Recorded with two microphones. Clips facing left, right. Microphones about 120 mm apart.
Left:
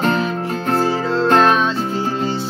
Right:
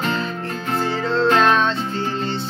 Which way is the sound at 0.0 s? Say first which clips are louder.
Left 5 dB; 50° left (ahead or behind).